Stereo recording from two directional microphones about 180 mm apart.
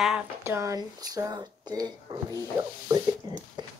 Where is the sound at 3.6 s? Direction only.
25° right (ahead or behind).